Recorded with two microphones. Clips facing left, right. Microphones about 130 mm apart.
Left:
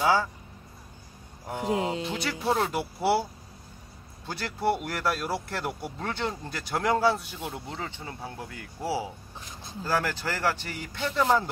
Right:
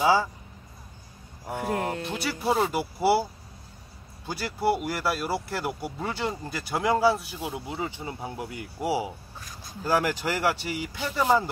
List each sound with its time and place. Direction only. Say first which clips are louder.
0.0 s speech: right 2 dB; 10° right (ahead or behind)
1.6 s speech: left 1 dB; 15° left (ahead or behind)
2.0 s speech: right 1 dB; 5° right (ahead or behind)
4.3 s speech: right 2 dB; 5° right (ahead or behind)
9.4 s a sound: left 1 dB; 25° left (ahead or behind)
9.8 s speech: right 3 dB; 15° right (ahead or behind)